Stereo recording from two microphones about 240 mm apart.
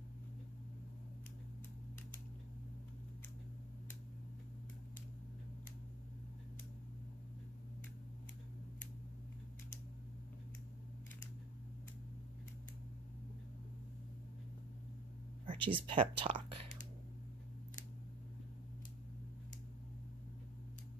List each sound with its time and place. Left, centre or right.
15.4 s speech: right